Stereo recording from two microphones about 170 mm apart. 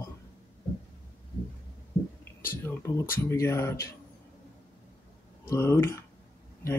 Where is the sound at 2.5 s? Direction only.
15° left (ahead or behind).